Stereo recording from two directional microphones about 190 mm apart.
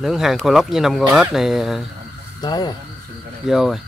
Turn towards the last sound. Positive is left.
turn(degrees=0)  # may be behind; listen again after turning